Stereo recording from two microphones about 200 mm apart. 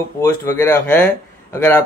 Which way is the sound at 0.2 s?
10° left (ahead or behind).